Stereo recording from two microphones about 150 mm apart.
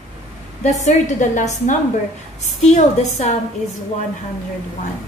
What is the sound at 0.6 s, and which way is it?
A woman's voice, 55° left (ahead or behind).